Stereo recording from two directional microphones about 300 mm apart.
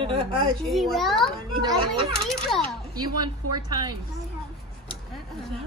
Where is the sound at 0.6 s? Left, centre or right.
Centre.